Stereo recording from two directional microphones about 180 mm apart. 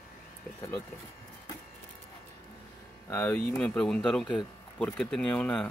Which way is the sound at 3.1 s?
10° left (ahead or behind).